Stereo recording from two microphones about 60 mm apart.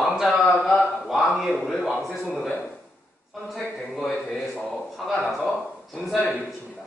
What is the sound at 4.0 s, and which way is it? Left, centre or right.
Speech, left.